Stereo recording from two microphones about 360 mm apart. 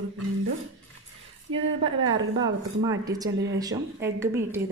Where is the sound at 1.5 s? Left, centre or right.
Right.